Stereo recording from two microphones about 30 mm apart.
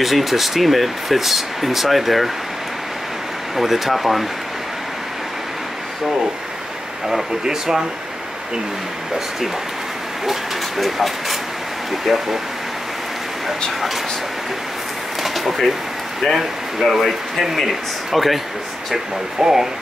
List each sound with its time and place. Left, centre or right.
0.0 s speech: centre
3.5 s speech: centre
7.4 s speech: centre
10.8 s speech: centre
15.2 s a sound: centre
16.9 s speech: centre
19.4 s speech: centre